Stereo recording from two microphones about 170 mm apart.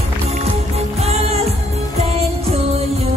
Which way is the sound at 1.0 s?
35° right (ahead or behind).